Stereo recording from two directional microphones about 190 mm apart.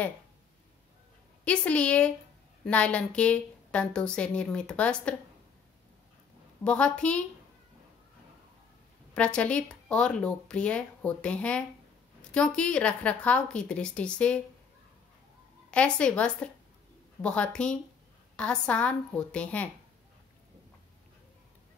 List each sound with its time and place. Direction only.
1.4 s a woman's voice: 5° left (ahead or behind)
6.6 s a woman's voice: 5° left (ahead or behind)
9.1 s speech: 5° left (ahead or behind)
15.7 s speech: 5° left (ahead or behind)